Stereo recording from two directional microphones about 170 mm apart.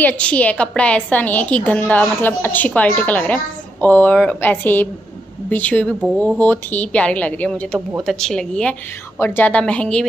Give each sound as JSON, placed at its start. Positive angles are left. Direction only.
{"t": 0.0, "sound": "a woman's voice", "side_deg": 5}